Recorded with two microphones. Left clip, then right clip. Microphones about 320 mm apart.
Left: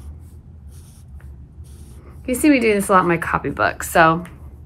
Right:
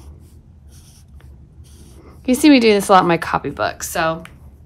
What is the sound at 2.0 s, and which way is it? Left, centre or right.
Speech, centre.